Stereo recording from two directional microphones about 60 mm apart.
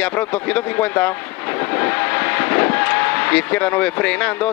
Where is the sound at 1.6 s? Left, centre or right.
Left.